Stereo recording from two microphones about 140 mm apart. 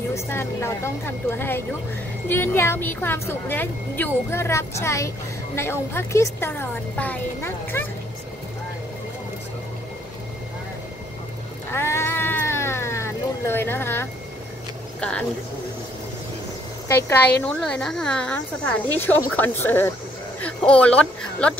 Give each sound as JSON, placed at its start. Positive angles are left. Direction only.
{"t": 0.1, "sound": "speech", "side_deg": 20}
{"t": 11.7, "sound": "cat", "side_deg": 20}
{"t": 15.0, "sound": "speech", "side_deg": 5}
{"t": 16.8, "sound": "speech", "side_deg": 15}
{"t": 17.5, "sound": "speech", "side_deg": 5}